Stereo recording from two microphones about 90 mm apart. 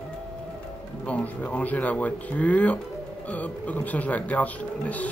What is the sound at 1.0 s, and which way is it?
Speech, 15° left (ahead or behind).